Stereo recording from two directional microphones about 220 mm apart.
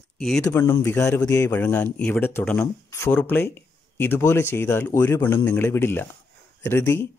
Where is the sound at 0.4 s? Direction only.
10° left (ahead or behind).